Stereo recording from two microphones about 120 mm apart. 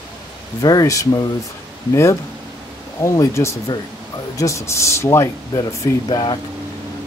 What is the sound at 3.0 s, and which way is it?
Speech, 25° left (ahead or behind).